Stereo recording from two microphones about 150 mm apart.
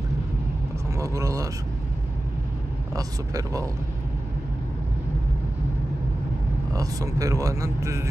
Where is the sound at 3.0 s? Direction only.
25° right (ahead or behind).